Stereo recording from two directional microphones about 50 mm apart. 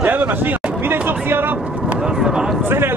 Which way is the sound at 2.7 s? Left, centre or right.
Right.